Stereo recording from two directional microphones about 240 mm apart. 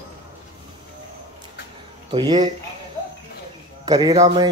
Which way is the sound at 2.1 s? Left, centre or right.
Centre.